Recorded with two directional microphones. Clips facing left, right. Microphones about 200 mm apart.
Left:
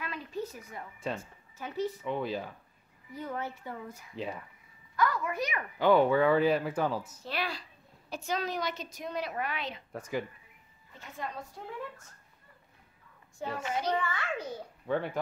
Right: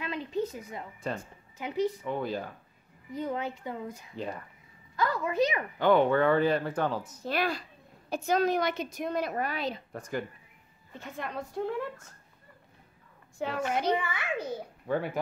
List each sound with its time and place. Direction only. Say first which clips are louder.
0.0 s a sound: right 5 dB; 20° right (ahead or behind)
1.2 s speech: right 4 dB; 15° right (ahead or behind)
2.0 s speech: right 1 dB; centre (ahead or behind)
3.1 s a child's voice: right 4 dB; 20° right (ahead or behind)
4.1 s speech: left 1 dB; centre (ahead or behind)
4.9 s a woman's voice: right 2 dB; 25° right (ahead or behind)
5.8 s speech: even; 5° left (ahead or behind)
7.2 s a woman's voice: right 8 dB; 50° right (ahead or behind)
9.9 s speech: even; 5° left (ahead or behind)
11.0 s a woman's voice: right 3 dB; 65° right (ahead or behind)
13.4 s a woman's voice: right 4 dB; 70° right (ahead or behind)
13.9 s a child's voice: right 1 dB; 10° right (ahead or behind)